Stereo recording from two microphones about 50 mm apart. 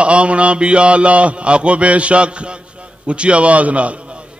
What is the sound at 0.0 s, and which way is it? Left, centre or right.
Mantra, right.